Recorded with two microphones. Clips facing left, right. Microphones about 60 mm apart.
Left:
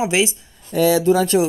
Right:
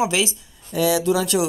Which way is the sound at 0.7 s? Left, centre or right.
Left.